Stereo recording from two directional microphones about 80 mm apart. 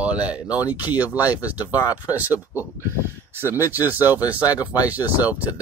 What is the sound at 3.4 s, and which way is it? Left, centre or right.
Speech, right.